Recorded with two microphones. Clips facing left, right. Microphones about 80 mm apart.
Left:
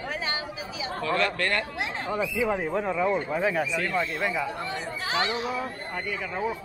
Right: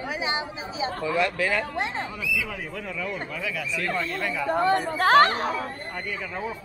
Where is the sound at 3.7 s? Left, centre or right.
Centre.